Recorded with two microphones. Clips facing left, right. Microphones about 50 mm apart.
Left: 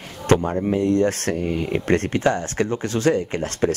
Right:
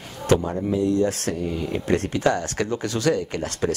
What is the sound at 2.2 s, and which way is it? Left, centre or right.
Speech, left.